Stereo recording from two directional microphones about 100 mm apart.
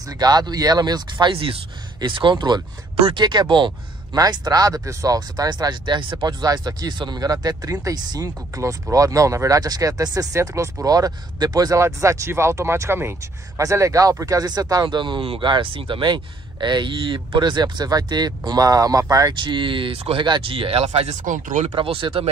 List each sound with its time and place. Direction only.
0.0 s speech: 40° right (ahead or behind)
1.3 s speech: 60° right (ahead or behind)
4.1 s speech: 40° right (ahead or behind)
6.2 s speech: 40° right (ahead or behind)
19.3 s speech: 55° right (ahead or behind); by 20.2 s 70° right (ahead or behind)
20.2 s speech: 55° right (ahead or behind); by 21.1 s 85° right
21.6 s speech: 65° right (ahead or behind)